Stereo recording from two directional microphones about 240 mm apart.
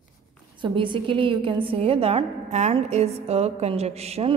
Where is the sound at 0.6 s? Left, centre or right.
Right.